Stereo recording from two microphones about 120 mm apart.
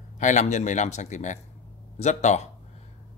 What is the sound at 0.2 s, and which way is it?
A man's voice, 85° left.